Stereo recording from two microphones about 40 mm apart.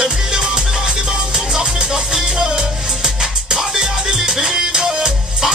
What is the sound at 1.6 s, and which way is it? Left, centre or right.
Music, centre.